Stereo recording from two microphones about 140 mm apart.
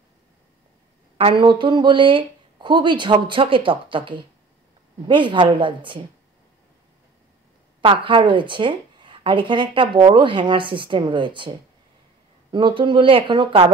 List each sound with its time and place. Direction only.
1.1 s speech: 40° right (ahead or behind)
7.8 s speech: 40° right (ahead or behind)